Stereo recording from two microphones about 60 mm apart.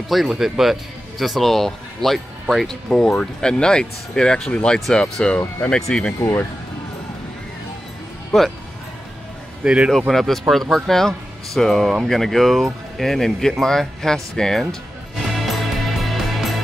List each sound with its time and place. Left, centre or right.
0.3 s speech: centre
8.3 s speech: centre
9.6 s a man's voice: centre
9.9 s speech: centre
15.3 s music: centre